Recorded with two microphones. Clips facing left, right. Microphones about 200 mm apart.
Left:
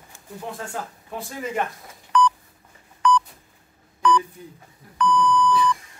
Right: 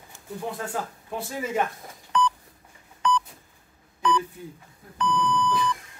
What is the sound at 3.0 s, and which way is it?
Telephone dialing, 25° right (ahead or behind).